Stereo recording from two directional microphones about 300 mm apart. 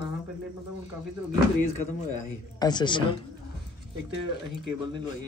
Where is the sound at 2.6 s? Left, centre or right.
Centre.